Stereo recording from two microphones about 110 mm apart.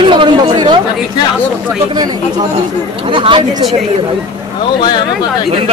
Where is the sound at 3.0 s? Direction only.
50° right (ahead or behind).